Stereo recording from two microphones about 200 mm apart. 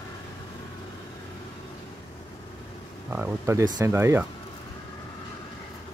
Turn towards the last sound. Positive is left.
turn(degrees=-15)  # may be behind; listen again after turning